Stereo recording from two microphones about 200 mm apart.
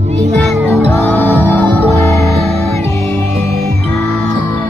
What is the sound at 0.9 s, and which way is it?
Music, 10° left (ahead or behind).